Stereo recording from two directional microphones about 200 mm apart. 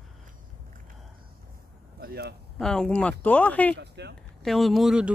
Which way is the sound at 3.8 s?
55° right (ahead or behind).